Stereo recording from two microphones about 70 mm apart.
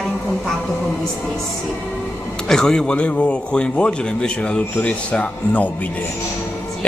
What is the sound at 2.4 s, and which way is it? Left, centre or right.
A man's voice, centre.